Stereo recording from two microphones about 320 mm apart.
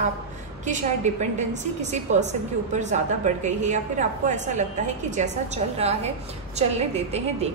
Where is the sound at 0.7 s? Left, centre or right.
Right.